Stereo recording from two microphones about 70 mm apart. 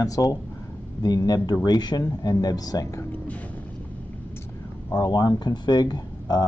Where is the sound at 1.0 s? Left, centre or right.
Left.